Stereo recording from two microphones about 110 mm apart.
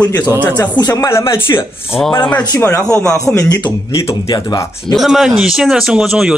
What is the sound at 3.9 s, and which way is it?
Speech, 35° left (ahead or behind).